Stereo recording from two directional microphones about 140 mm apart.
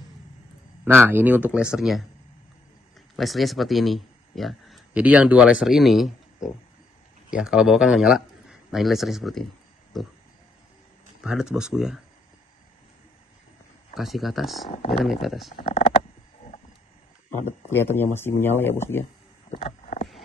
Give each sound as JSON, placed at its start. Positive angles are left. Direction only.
{"t": 0.8, "sound": "speech", "side_deg": -15}
{"t": 3.2, "sound": "a man's voice", "side_deg": 0}
{"t": 11.2, "sound": "a man's voice", "side_deg": -5}
{"t": 13.9, "sound": "a man's voice", "side_deg": 0}
{"t": 15.6, "sound": "speech", "side_deg": 55}
{"t": 17.5, "sound": "speech", "side_deg": 15}
{"t": 19.5, "sound": "boat", "side_deg": 50}